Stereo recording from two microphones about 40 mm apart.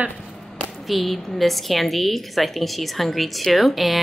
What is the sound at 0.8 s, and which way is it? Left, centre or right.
A woman's voice, centre.